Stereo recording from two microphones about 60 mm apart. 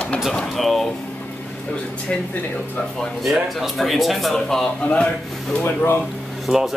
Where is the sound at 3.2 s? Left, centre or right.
Centre.